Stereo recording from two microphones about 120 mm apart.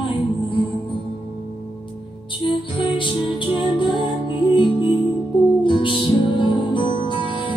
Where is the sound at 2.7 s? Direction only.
45° left (ahead or behind).